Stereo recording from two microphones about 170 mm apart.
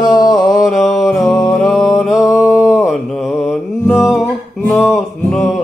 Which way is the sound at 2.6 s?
Centre (ahead or behind).